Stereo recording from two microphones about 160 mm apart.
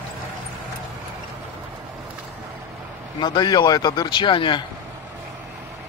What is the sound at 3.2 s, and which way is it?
Speech, 25° left (ahead or behind).